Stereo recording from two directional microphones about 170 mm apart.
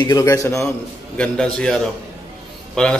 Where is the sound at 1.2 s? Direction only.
5° left (ahead or behind).